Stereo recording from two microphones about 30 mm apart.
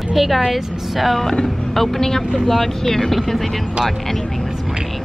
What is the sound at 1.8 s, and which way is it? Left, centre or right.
Speech, centre.